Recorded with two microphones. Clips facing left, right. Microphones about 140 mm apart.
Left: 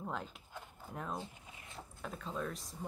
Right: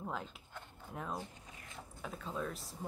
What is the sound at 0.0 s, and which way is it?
A woman's voice, centre (ahead or behind).